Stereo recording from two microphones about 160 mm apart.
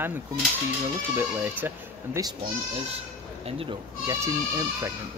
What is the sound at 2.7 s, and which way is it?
Speech, 40° right (ahead or behind).